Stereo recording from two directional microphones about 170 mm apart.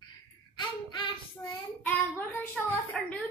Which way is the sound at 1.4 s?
20° left (ahead or behind).